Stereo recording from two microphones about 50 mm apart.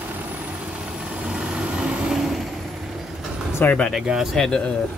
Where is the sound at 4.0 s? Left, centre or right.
Centre.